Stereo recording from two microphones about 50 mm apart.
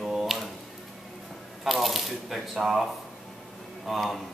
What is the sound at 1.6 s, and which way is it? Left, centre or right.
Speech, centre.